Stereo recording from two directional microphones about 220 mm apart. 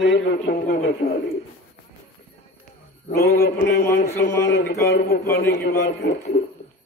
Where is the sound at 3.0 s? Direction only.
45° left (ahead or behind).